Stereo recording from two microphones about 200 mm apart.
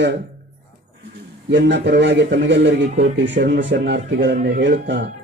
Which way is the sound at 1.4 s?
60° right (ahead or behind).